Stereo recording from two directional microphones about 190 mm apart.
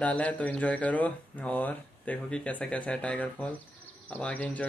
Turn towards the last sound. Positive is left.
turn(degrees=10)  # may be behind; listen again after turning